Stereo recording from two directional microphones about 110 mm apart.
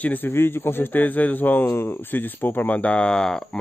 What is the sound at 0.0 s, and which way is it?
A man's voice, 15° left (ahead or behind).